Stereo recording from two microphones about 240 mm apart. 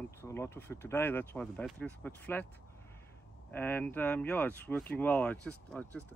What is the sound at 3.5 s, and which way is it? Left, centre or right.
Speech, centre.